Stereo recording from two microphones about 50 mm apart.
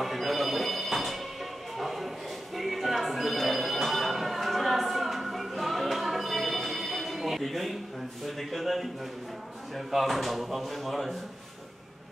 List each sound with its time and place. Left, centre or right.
0.0 s telephone bell ringing: centre
8.3 s speech: centre